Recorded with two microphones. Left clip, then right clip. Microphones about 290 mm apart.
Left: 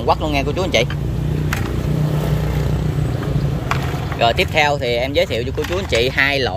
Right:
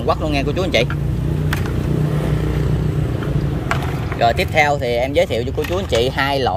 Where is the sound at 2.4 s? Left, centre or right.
Left.